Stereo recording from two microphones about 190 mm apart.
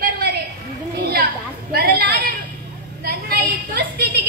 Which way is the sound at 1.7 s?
55° right (ahead or behind).